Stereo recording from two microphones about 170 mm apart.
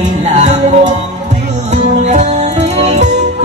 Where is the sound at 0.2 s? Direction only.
45° right (ahead or behind).